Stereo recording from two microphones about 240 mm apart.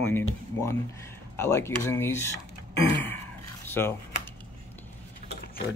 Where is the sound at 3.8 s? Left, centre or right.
Centre.